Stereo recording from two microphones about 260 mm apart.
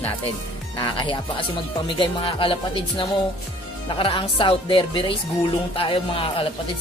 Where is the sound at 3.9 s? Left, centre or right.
Centre.